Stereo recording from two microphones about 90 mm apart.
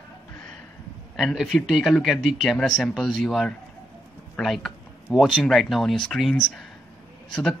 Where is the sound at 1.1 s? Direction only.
Centre (ahead or behind).